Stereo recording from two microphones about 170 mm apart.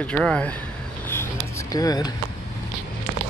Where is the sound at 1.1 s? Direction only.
15° left (ahead or behind).